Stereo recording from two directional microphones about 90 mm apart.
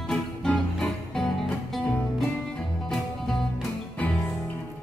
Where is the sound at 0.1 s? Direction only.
10° left (ahead or behind).